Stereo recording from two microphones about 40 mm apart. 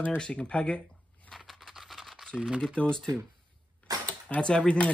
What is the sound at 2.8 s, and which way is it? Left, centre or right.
Speech, left.